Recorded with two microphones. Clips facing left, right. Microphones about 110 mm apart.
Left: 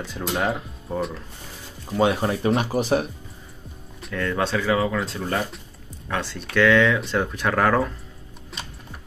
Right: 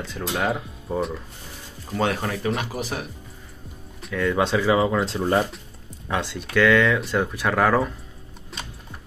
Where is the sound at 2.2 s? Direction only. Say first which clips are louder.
Left 4 dB; 25° left (ahead or behind).